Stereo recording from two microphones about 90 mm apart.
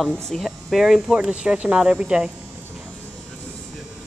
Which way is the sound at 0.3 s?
Centre (ahead or behind).